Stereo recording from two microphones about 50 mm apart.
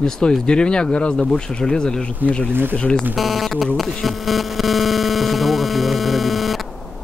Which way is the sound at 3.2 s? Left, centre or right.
Centre.